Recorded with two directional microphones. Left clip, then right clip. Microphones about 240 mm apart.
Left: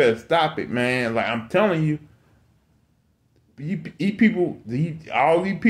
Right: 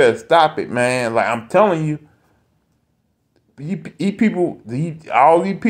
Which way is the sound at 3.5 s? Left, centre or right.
Centre.